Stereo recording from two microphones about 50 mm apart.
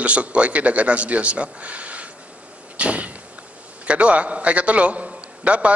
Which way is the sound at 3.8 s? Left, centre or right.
Right.